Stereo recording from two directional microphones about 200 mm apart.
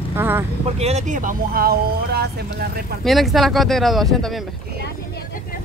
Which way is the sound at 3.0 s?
Centre (ahead or behind).